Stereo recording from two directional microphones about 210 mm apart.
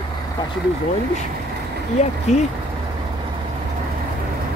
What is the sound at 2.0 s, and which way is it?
Speech, 30° left (ahead or behind).